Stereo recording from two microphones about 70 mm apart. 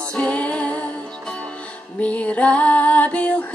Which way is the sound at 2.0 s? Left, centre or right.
Centre.